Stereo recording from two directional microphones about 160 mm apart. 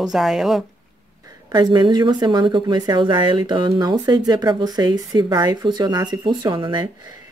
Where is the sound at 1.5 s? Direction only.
30° right (ahead or behind).